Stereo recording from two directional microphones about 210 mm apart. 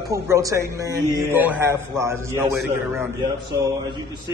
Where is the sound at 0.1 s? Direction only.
15° right (ahead or behind).